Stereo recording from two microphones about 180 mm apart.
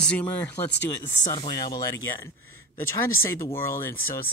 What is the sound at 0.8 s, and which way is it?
Speech, 20° left (ahead or behind).